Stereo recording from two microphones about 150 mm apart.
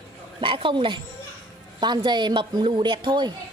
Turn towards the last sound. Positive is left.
turn(degrees=-30)  # may be behind; listen again after turning